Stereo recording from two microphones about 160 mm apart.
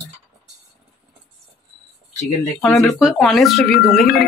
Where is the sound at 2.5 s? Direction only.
5° left (ahead or behind).